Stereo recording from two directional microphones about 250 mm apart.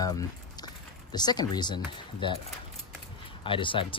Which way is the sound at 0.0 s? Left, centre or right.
Centre.